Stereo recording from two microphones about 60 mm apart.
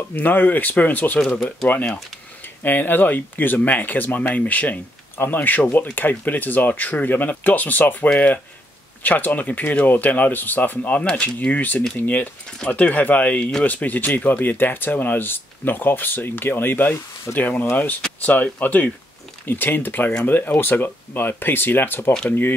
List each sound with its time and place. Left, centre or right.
0.1 s speech: left